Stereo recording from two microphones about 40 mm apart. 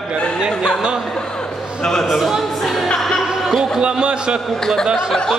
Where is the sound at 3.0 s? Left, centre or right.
Centre.